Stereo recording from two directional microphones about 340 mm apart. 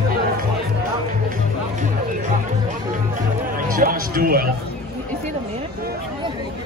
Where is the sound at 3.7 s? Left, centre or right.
Right.